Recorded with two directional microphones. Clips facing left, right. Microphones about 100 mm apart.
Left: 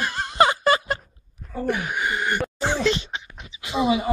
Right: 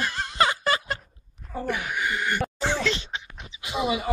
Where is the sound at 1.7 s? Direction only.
25° left (ahead or behind).